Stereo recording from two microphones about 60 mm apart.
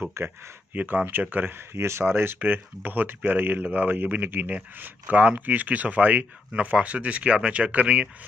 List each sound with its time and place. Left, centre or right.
0.2 s speech: right
0.7 s speech: right
1.7 s speech: right
2.1 s speech: right